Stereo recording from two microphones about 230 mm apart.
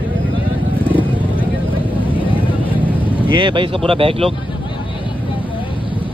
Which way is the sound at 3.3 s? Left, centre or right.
Right.